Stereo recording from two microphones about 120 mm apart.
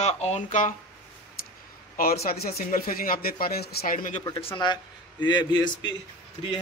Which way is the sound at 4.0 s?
90° left.